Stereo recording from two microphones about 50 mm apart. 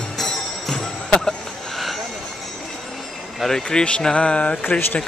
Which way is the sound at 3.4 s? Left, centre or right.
Centre.